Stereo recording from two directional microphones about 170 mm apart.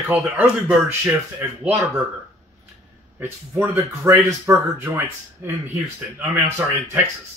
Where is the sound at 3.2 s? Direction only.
15° right (ahead or behind).